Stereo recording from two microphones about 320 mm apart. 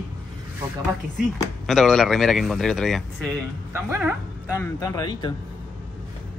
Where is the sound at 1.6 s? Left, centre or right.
Centre.